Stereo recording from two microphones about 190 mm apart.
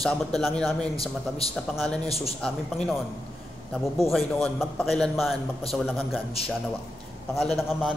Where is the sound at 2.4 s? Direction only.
5° left (ahead or behind).